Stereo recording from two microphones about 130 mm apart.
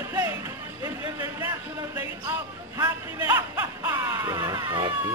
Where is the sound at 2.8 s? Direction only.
15° right (ahead or behind).